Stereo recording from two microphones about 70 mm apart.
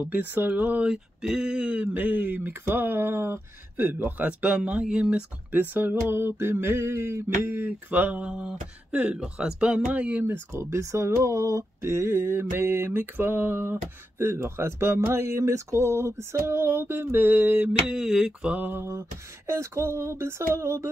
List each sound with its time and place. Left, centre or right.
0.0 s speech: right
0.8 s speech: centre; by 3.9 s right
3.9 s speech: right
5.5 s speech: right
10.5 s speech: right
17.8 s speech: centre
18.7 s speech: right